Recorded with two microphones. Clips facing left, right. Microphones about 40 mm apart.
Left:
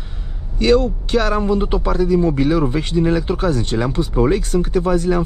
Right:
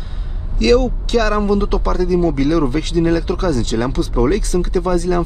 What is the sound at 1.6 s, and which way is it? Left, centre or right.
Speech, left.